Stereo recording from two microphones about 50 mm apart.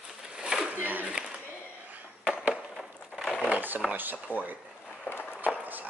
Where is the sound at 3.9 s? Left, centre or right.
Right.